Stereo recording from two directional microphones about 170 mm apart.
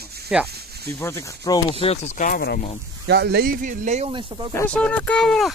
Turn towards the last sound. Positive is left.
turn(degrees=0)  # may be behind; listen again after turning